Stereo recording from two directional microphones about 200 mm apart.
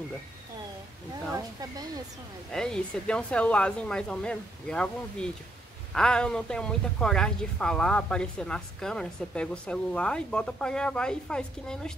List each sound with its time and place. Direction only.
1.3 s speech: 20° right (ahead or behind)
2.5 s a woman's voice: 5° left (ahead or behind)